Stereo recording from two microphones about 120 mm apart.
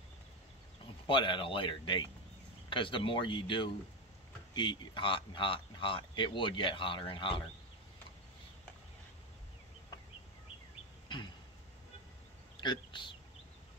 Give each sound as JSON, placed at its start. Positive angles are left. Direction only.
{"t": 1.0, "sound": "speech", "side_deg": 45}
{"t": 12.5, "sound": "speech", "side_deg": 40}